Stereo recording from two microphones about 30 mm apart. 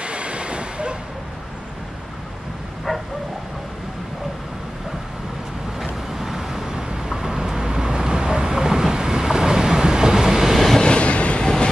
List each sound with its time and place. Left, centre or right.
0.0 s vehicle: right
2.9 s bow-wow: centre
5.8 s vehicle: centre
10.8 s train: left
11.4 s train: left